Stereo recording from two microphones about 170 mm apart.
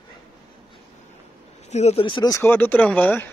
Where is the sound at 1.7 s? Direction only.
35° left (ahead or behind); by 3.3 s 10° left (ahead or behind).